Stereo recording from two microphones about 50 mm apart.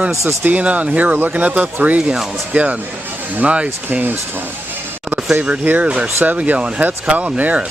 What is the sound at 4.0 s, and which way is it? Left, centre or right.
Speech, right.